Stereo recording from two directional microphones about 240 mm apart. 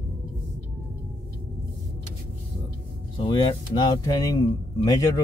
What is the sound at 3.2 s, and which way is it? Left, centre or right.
Speech, centre.